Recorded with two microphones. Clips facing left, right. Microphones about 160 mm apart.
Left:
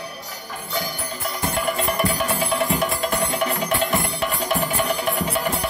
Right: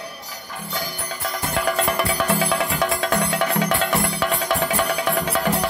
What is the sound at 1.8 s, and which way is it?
Music, 75° right (ahead or behind).